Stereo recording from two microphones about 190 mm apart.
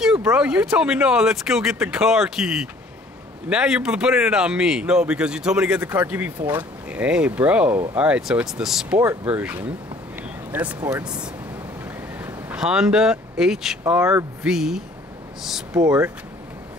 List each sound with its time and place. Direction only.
0.0 s a man's voice: 5° right (ahead or behind)
12.2 s a man's voice: 5° right (ahead or behind)
15.8 s speech: 15° right (ahead or behind)